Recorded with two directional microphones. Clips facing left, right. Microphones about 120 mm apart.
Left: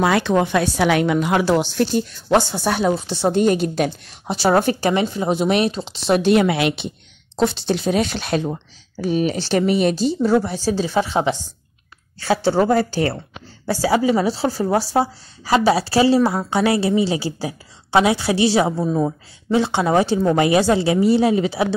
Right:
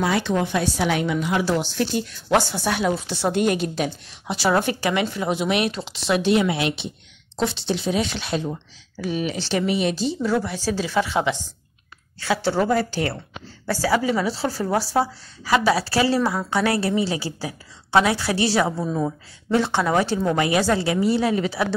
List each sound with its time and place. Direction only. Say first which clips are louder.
0.0 s a woman's voice: left 5 dB; 65° left (ahead or behind)
2.6 s speech: left 3 dB; 35° left (ahead or behind)
2.9 s speech: left 4 dB; 25° left (ahead or behind); by 3.9 s 45° left (ahead or behind)
4.3 s speech: left 4 dB; 35° left (ahead or behind)
6.0 s a woman's voice: left 4 dB; 50° left (ahead or behind); by 6.9 s 65° left (ahead or behind)
7.3 s speech: left 5 dB; 45° left (ahead or behind)
8.9 s speech: left 5 dB; 40° left (ahead or behind)
10.3 s a woman's voice: left 5 dB; 30° left (ahead or behind)
13.7 s a woman's voice: left 4 dB; 25° left (ahead or behind)